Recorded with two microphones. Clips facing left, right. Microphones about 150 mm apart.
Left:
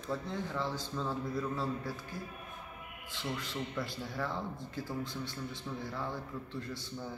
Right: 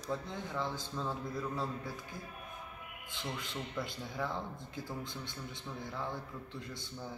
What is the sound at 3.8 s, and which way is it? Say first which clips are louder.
A man's voice: right 1 dB; 15° right (ahead or behind).